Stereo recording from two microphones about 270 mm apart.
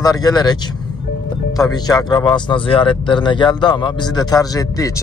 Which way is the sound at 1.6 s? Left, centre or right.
Centre.